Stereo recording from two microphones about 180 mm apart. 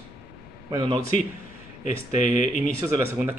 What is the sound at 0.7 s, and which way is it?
Speech, 20° right (ahead or behind).